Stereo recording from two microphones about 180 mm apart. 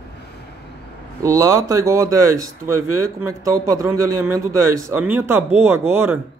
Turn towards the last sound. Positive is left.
turn(degrees=-15)  # may be behind; listen again after turning